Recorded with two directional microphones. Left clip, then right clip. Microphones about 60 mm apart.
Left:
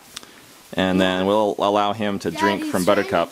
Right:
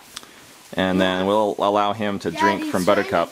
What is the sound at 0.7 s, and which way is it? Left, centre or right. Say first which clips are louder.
Speech: even; left.